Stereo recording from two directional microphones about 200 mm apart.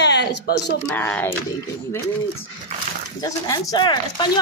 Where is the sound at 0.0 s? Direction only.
60° left (ahead or behind).